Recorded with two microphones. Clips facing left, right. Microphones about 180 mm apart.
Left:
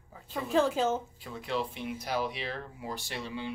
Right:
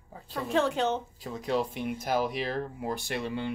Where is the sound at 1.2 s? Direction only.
40° right (ahead or behind).